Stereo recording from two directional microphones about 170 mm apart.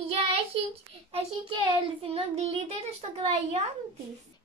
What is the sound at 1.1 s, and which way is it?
Child singing, 30° right (ahead or behind).